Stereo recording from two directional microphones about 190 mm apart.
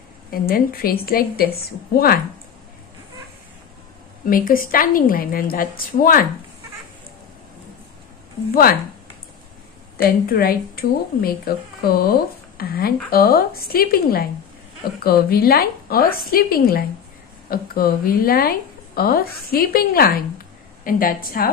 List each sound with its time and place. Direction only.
0.3 s speech: 50° left (ahead or behind)
4.3 s speech: 50° left (ahead or behind)
9.9 s speech: 55° left (ahead or behind)